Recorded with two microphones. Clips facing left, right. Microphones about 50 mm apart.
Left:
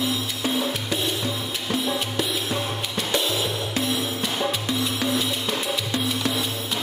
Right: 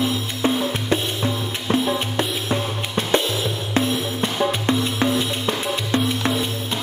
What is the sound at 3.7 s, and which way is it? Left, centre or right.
Music, right.